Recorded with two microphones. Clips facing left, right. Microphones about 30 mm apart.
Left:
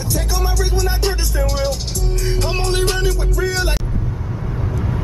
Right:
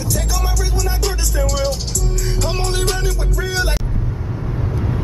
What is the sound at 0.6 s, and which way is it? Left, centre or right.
Music, left.